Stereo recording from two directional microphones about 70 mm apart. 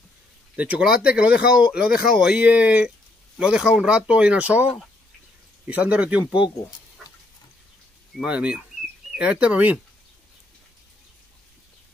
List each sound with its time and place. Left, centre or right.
0.6 s speech: centre
3.3 s speech: centre
5.7 s speech: centre
8.2 s speech: centre